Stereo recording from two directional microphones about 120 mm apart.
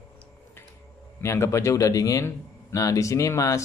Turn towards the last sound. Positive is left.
turn(degrees=25)  # may be behind; listen again after turning